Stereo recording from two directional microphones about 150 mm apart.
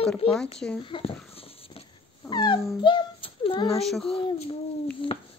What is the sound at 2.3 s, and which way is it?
Speech, 30° left (ahead or behind).